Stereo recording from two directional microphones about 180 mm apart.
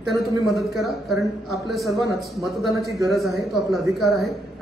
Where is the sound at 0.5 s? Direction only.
Centre (ahead or behind).